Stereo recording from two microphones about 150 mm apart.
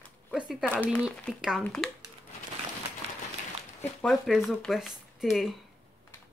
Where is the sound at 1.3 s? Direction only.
5° right (ahead or behind).